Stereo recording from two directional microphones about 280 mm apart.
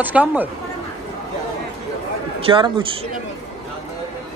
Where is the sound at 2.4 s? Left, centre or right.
Centre.